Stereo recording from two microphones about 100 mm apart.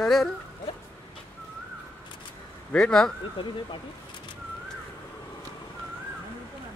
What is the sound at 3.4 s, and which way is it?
Speech, 65° left (ahead or behind).